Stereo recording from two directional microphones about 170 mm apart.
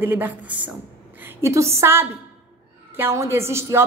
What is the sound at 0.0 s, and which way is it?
A man's voice, 10° right (ahead or behind).